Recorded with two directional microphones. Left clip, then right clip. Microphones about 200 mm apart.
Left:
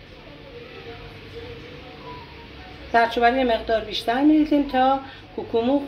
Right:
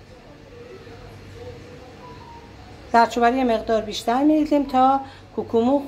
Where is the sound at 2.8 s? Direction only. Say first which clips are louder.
Right 1 dB; 60° right (ahead or behind).